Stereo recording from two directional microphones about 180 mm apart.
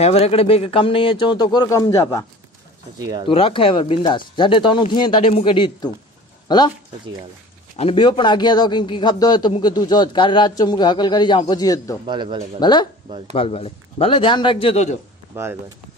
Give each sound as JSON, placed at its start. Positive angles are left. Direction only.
{"t": 0.0, "sound": "a man's voice", "side_deg": 35}
{"t": 3.0, "sound": "speech", "side_deg": -20}
{"t": 3.3, "sound": "a man's voice", "side_deg": 30}
{"t": 7.7, "sound": "a man's voice", "side_deg": 30}
{"t": 12.1, "sound": "speech", "side_deg": -25}
{"t": 12.5, "sound": "a man's voice", "side_deg": 25}
{"t": 15.3, "sound": "speech", "side_deg": -15}